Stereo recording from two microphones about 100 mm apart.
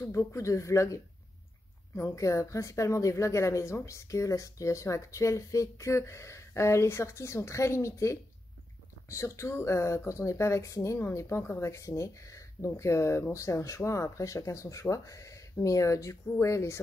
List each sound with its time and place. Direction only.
0.0 s speech: 30° left (ahead or behind)